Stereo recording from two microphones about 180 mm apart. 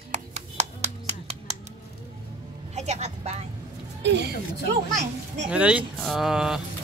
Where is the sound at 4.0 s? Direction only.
75° right (ahead or behind).